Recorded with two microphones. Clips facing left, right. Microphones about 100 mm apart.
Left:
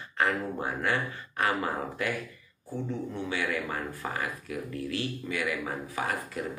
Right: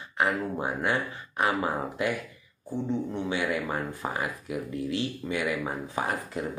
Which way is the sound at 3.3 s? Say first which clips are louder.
Right 3 dB; 20° right (ahead or behind).